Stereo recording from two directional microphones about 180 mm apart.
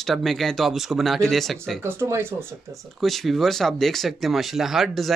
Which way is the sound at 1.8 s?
15° right (ahead or behind).